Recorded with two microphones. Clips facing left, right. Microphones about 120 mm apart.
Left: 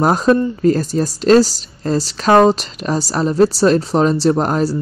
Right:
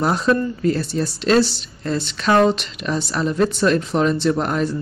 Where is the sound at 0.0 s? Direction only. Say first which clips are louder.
Left 5 dB; 40° left (ahead or behind).